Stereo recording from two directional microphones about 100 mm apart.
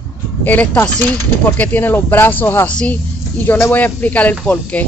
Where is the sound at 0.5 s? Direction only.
15° left (ahead or behind).